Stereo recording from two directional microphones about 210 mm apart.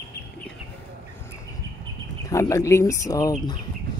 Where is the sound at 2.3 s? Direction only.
15° left (ahead or behind).